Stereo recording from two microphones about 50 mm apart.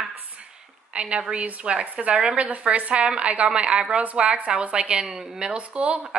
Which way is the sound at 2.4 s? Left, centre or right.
Right.